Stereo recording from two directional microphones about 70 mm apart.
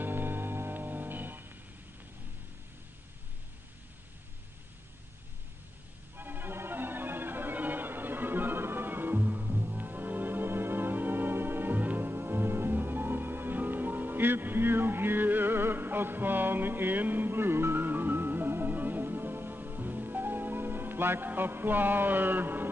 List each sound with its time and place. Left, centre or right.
0.0 s music: right
6.1 s music: right